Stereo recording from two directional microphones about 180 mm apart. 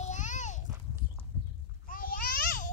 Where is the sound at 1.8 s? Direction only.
50° left (ahead or behind).